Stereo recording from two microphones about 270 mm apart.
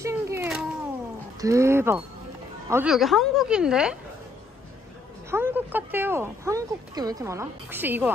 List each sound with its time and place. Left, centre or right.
0.0 s a sound: centre
1.4 s a woman's voice: centre
5.3 s speech: centre